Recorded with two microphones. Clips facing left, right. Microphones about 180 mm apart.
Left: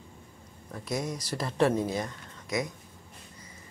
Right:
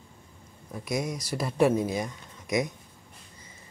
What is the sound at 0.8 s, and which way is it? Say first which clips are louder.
Speech: right 2 dB; 10° right (ahead or behind).